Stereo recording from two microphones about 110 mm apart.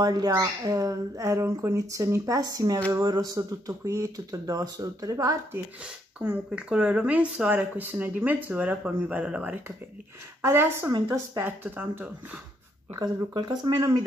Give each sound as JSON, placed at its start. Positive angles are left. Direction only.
{"t": 0.0, "sound": "speech", "side_deg": -35}
{"t": 6.1, "sound": "speech", "side_deg": -10}
{"t": 10.4, "sound": "speech", "side_deg": -25}
{"t": 12.9, "sound": "speech", "side_deg": -40}